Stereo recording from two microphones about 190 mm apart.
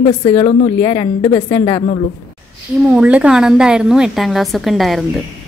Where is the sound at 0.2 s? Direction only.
30° left (ahead or behind).